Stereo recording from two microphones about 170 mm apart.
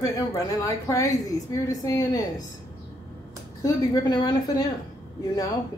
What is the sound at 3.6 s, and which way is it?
Speech, 25° left (ahead or behind).